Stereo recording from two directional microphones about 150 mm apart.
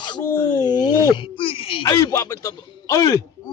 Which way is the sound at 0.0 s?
30° left (ahead or behind).